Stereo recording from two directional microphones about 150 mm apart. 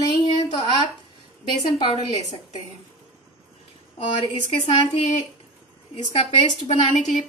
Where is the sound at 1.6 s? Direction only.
30° left (ahead or behind).